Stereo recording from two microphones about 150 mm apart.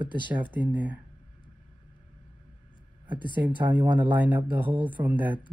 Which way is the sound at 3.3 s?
10° right (ahead or behind).